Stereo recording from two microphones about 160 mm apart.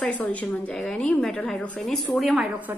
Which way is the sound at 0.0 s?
10° left (ahead or behind).